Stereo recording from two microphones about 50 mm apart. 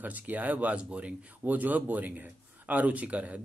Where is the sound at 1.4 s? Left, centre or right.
Right.